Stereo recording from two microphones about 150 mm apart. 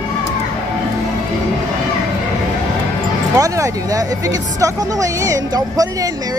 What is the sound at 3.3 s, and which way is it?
Speech, 20° right (ahead or behind).